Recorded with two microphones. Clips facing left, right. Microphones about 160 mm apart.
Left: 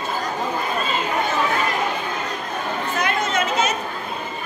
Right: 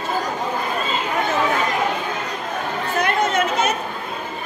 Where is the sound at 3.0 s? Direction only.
60° right (ahead or behind).